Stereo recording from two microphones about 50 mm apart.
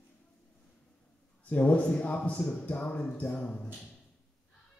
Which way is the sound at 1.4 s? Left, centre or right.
Left.